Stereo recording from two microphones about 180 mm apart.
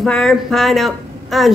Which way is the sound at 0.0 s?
Centre (ahead or behind).